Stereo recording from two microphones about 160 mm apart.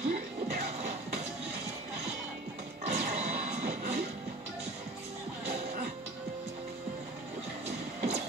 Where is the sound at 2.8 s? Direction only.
45° right (ahead or behind).